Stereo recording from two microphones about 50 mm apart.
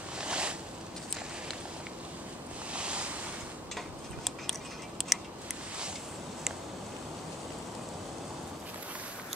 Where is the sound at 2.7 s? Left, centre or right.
Right.